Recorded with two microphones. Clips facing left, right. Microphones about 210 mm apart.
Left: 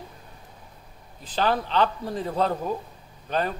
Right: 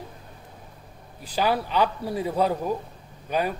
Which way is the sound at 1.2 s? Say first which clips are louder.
Even; 10° right (ahead or behind).